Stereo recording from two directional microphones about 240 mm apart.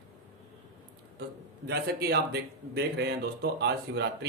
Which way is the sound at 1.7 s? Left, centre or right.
Right.